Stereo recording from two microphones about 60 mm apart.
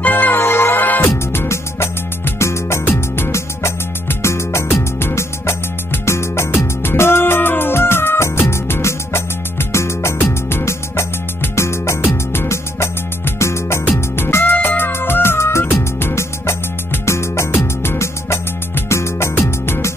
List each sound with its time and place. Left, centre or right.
0.0 s music: left
1.1 s music: left